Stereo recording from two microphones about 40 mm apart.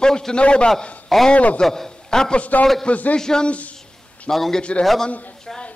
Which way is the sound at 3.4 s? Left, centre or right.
Left.